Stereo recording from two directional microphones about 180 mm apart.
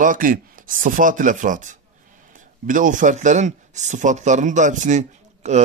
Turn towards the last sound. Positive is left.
turn(degrees=-40)  # may be behind; listen again after turning